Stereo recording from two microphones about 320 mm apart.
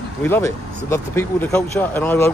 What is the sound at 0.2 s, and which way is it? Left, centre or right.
Speech, centre.